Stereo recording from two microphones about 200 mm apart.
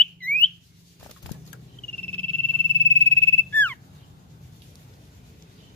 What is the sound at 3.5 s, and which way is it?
Bird, 10° left (ahead or behind).